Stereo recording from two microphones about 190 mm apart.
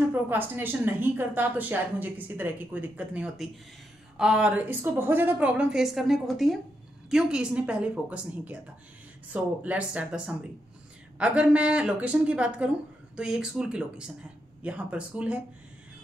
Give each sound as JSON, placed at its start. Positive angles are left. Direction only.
{"t": 0.1, "sound": "speech", "side_deg": -10}